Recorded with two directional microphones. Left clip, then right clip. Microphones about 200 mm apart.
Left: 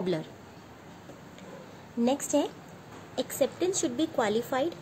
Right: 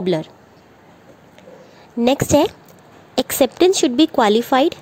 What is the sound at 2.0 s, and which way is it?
A woman's voice, 50° right (ahead or behind).